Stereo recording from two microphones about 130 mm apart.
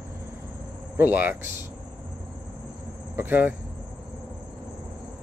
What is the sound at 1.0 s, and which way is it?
Speech, 15° right (ahead or behind).